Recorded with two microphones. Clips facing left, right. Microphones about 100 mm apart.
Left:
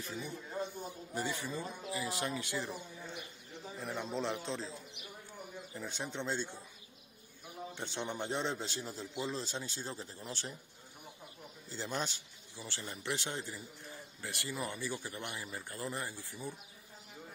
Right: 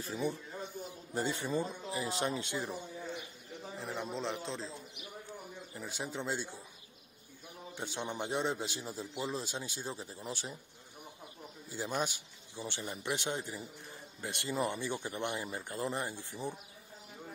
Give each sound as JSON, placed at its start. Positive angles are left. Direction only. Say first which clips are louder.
{"t": 0.0, "sound": "speech", "louder": "right 6 dB", "side_deg": -35}
{"t": 3.8, "sound": "speech", "louder": "left 1 dB", "side_deg": 0}
{"t": 5.8, "sound": "a man's voice", "louder": "right 1 dB", "side_deg": -5}
{"t": 7.7, "sound": "a man's voice", "louder": "right 2 dB", "side_deg": -15}
{"t": 11.7, "sound": "a man's voice", "louder": "right 3 dB", "side_deg": -15}